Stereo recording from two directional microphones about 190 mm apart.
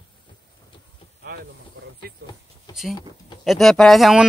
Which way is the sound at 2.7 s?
Centre (ahead or behind).